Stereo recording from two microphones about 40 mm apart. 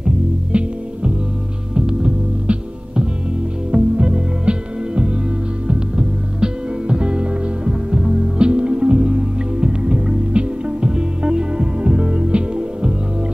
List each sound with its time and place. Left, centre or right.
0.0 s music: right
3.7 s music: right